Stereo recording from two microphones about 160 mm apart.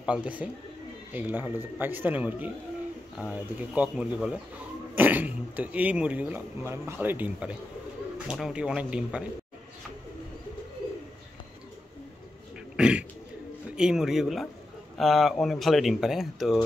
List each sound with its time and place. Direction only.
0.0 s speech: 5° right (ahead or behind)
12.7 s dog: 5° right (ahead or behind)
13.7 s speech: 5° right (ahead or behind)